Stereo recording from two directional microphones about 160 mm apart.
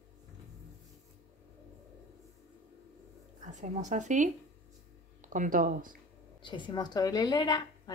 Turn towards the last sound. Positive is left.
turn(degrees=25)  # may be behind; listen again after turning